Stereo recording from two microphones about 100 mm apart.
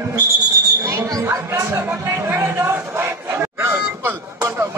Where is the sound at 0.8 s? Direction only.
30° right (ahead or behind).